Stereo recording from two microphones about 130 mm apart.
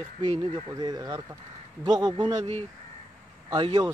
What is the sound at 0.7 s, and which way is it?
Speech, 25° right (ahead or behind).